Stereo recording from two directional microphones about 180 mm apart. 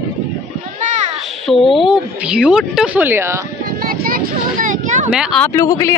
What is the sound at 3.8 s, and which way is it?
Vehicle, 50° right (ahead or behind).